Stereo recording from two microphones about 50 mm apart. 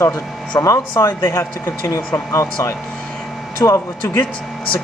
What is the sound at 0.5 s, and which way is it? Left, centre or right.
Speech, left.